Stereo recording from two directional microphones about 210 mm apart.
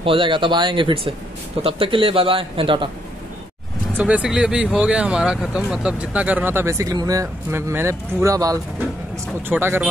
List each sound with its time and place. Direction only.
0.0 s a man's voice: 25° right (ahead or behind)
3.9 s speech: 5° right (ahead or behind)